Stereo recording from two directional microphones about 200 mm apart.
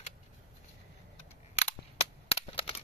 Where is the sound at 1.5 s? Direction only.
30° left (ahead or behind).